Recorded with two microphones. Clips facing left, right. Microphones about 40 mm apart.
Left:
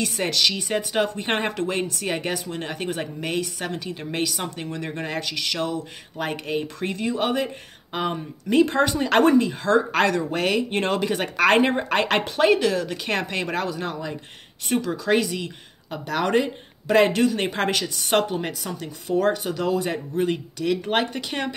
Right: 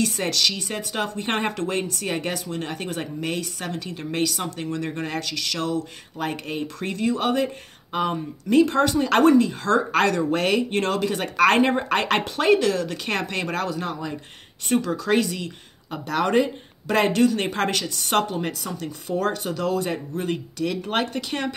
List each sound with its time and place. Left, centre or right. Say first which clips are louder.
0.0 s speech: even; centre
9.3 s speech: even; centre
10.8 s speech: even; left